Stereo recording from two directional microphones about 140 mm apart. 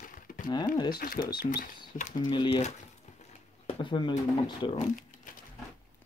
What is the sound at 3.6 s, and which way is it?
Speech, 35° left (ahead or behind).